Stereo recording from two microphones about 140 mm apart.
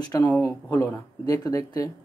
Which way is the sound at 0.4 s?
20° left (ahead or behind).